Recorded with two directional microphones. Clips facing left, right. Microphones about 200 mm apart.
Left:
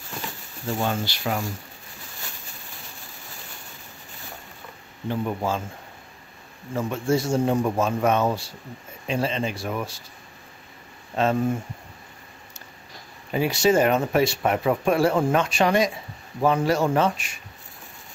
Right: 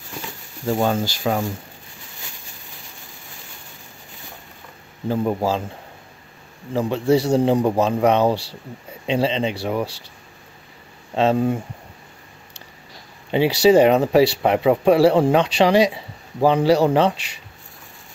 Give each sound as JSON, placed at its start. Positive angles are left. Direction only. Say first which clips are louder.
{"t": 0.7, "sound": "speech", "louder": "right 5 dB", "side_deg": -45}
{"t": 5.0, "sound": "a man's voice", "louder": "right 5 dB", "side_deg": -40}
{"t": 6.7, "sound": "a man's voice", "louder": "right 6 dB", "side_deg": -30}
{"t": 11.1, "sound": "speech", "louder": "right 4 dB", "side_deg": -25}
{"t": 13.3, "sound": "a man's voice", "louder": "right 6 dB", "side_deg": -30}